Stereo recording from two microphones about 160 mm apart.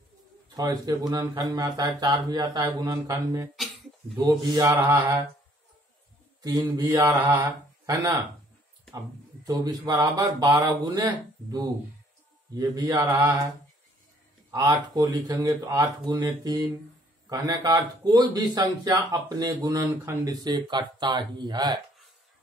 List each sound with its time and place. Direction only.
0.6 s speech: 25° right (ahead or behind)
6.4 s speech: 25° right (ahead or behind)
14.5 s speech: 25° right (ahead or behind)